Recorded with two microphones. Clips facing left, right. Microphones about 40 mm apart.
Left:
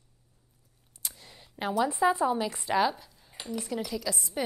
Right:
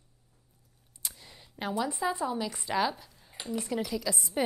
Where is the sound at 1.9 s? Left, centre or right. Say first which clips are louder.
Left 6 dB; left.